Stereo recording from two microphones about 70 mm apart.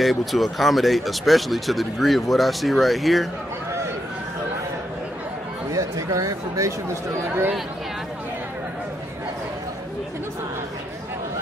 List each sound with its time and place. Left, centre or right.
0.0 s speech: centre
5.7 s speech: right